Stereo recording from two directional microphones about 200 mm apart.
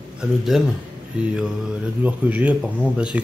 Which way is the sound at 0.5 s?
Centre (ahead or behind).